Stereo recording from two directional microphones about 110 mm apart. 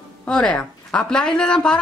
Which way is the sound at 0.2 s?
10° left (ahead or behind).